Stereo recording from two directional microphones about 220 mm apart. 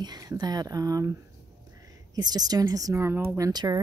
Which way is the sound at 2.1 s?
20° right (ahead or behind).